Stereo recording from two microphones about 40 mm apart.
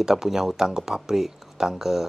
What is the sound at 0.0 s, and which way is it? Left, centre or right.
Speech, centre.